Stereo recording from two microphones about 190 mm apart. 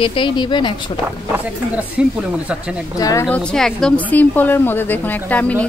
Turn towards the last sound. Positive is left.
turn(degrees=10)  # may be behind; listen again after turning